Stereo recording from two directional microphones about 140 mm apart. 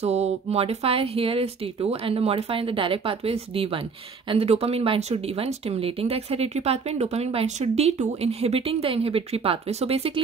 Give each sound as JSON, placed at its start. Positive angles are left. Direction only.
{"t": 0.0, "sound": "speech", "side_deg": -50}